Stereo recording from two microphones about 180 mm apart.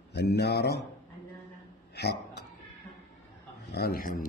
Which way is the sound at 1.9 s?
65° left (ahead or behind).